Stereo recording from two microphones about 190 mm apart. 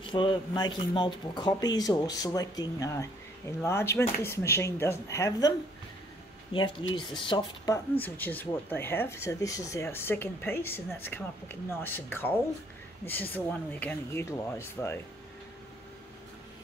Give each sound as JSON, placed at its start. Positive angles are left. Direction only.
{"t": 0.0, "sound": "speech", "side_deg": 25}
{"t": 6.5, "sound": "speech", "side_deg": 25}
{"t": 8.0, "sound": "speech", "side_deg": 10}